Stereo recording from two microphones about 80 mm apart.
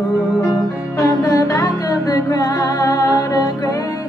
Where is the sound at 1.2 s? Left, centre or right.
Left.